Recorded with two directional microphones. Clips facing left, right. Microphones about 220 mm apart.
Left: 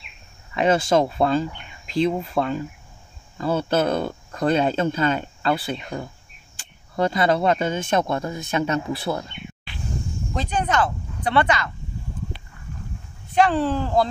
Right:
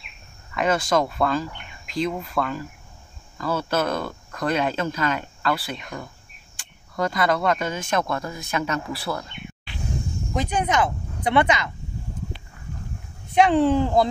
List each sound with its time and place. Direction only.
0.6 s speech: 30° left (ahead or behind)
10.3 s speech: 15° right (ahead or behind)
13.3 s speech: 20° right (ahead or behind)